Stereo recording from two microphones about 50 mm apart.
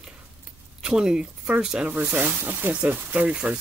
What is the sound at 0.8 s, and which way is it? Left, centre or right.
Speech, centre.